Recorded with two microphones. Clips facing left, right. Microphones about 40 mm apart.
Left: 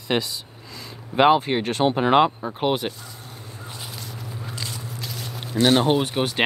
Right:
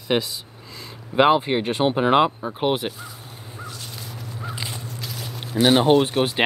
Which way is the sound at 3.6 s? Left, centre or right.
Centre.